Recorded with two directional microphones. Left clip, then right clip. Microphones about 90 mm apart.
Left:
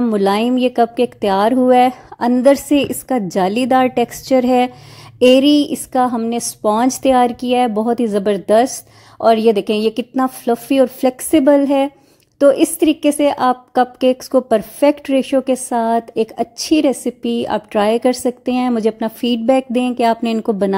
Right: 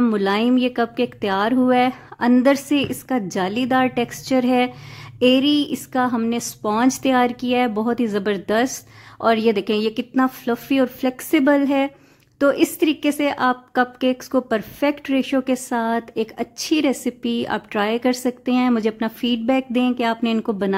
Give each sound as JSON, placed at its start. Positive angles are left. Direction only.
{"t": 0.1, "sound": "a woman's voice", "side_deg": 40}
{"t": 5.2, "sound": "speech", "side_deg": 50}
{"t": 5.7, "sound": "a woman's voice", "side_deg": 40}
{"t": 19.2, "sound": "a woman's voice", "side_deg": 40}